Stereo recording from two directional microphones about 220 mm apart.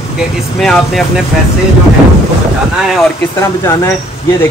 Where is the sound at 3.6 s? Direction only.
10° left (ahead or behind).